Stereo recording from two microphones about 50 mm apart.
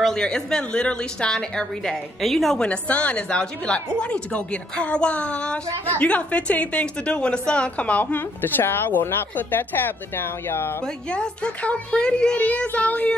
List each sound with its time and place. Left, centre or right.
0.0 s a woman's voice: centre
2.6 s a woman's voice: left
11.1 s a woman's voice: left
12.4 s a woman's voice: left